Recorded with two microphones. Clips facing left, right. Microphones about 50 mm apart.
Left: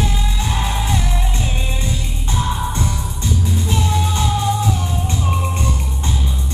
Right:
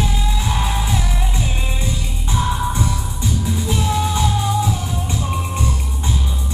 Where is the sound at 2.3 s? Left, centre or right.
Centre.